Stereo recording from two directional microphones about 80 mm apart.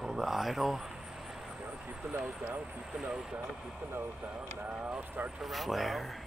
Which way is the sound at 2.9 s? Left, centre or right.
Centre.